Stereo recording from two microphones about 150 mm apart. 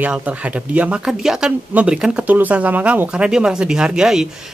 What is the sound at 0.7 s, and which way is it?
Speech, 10° right (ahead or behind).